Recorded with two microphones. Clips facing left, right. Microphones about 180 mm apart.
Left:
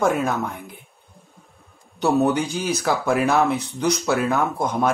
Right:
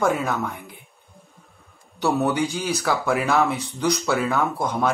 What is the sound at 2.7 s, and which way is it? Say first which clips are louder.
Speech: left 4 dB; 10° left (ahead or behind).